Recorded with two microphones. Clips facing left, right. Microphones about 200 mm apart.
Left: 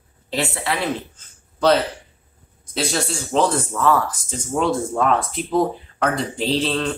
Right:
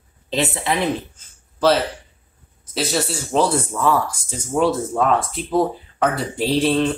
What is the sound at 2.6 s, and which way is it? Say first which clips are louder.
Speech: right 1 dB; 5° right (ahead or behind).